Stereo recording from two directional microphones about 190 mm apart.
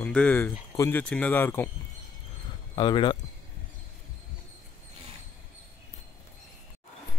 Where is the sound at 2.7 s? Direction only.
25° left (ahead or behind).